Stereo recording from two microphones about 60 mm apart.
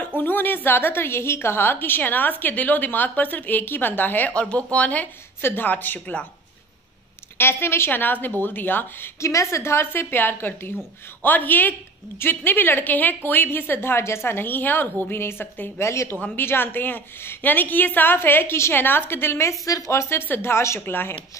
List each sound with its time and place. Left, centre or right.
0.2 s a woman's voice: left
4.3 s a woman's voice: centre
7.3 s a woman's voice: left
9.2 s a woman's voice: left
15.8 s a woman's voice: left
16.3 s a woman's voice: left
19.6 s speech: left
20.0 s a woman's voice: left
20.8 s a woman's voice: left